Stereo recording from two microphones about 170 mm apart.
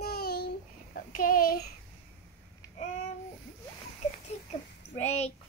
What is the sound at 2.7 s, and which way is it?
Babbling, 45° left (ahead or behind).